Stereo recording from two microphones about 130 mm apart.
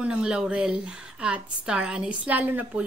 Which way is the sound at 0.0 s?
5° right (ahead or behind).